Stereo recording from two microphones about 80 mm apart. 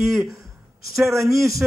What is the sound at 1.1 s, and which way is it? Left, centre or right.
Speech, right.